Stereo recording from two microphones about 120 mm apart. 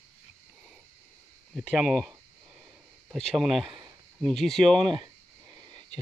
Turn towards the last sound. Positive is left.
turn(degrees=-40)  # may be behind; listen again after turning